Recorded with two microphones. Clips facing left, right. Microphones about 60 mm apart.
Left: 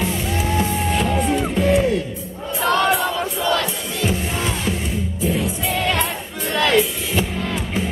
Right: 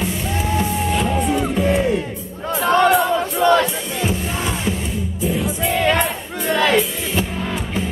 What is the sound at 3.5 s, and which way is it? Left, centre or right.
Crowd, right.